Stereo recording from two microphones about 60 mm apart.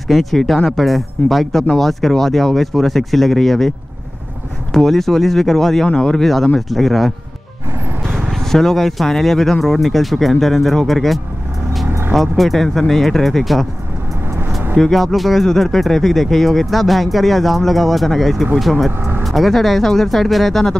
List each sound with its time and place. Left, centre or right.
0.1 s speech: centre
4.7 s speech: centre
6.2 s speech: centre
8.2 s speech: centre
14.8 s speech: centre
18.9 s speech: right
19.2 s speech: centre